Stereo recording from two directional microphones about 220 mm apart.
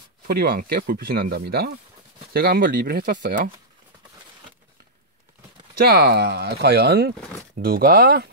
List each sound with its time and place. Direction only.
0.3 s speech: 40° right (ahead or behind)
5.8 s speech: 45° right (ahead or behind)